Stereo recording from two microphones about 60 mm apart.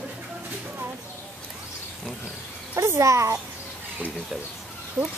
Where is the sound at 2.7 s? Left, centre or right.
Right.